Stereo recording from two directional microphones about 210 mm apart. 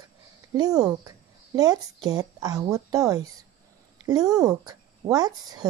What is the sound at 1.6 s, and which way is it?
A woman's voice, 20° right (ahead or behind).